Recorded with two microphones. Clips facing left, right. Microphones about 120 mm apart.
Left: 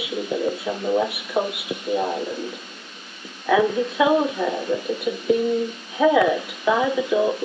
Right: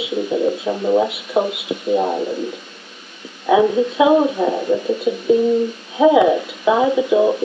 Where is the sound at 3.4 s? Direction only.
20° right (ahead or behind).